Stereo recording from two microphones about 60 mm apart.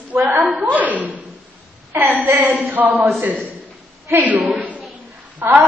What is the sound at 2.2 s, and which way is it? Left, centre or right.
Speech, right.